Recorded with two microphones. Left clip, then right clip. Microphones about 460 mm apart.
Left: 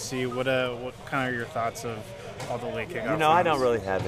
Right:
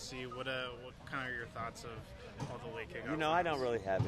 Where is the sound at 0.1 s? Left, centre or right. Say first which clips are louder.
Left 15 dB; centre.